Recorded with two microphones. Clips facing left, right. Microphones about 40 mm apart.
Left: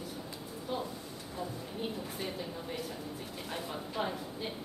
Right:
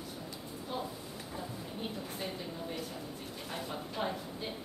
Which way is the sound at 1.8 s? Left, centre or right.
Centre.